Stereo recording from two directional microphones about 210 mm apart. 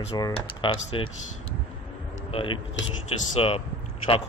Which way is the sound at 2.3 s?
25° left (ahead or behind).